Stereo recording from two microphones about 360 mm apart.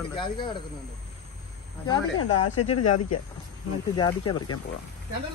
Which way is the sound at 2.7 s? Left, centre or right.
Left.